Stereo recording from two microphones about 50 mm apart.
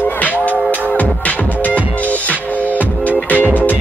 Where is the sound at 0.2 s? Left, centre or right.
Left.